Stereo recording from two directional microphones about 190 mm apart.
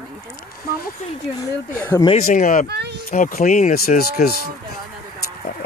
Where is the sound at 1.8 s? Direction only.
15° left (ahead or behind).